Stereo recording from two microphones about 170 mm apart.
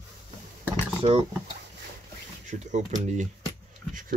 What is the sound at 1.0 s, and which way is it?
Speech, 35° right (ahead or behind).